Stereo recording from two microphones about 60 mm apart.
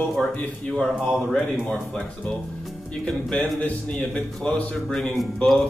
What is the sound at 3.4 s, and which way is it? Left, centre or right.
A man's voice, left.